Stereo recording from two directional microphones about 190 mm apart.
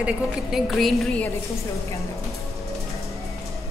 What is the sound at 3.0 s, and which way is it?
Music, centre (ahead or behind).